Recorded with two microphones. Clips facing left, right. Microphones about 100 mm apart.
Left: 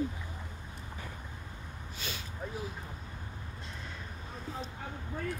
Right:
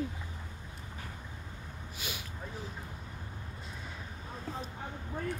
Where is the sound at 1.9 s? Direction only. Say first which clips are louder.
Even; 15° right (ahead or behind).